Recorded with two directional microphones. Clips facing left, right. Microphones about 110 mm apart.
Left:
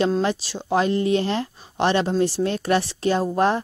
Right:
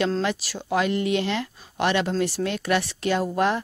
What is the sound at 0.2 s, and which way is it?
A woman's voice, 30° left (ahead or behind).